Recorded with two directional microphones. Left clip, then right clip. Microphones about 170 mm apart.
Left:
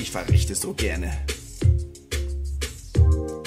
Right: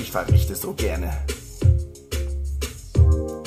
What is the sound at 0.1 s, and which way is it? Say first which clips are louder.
Speech: right 3 dB; 45° left (ahead or behind).